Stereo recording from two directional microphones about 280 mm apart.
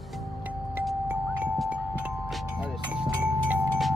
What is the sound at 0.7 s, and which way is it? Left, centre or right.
Music, centre.